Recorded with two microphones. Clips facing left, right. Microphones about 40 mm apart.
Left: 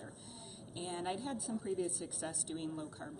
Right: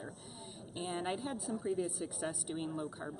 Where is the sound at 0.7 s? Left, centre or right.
Centre.